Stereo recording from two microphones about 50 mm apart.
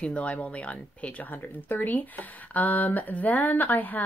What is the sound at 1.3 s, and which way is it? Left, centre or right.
Speech, left.